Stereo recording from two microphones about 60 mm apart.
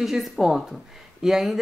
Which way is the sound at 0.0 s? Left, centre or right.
Centre.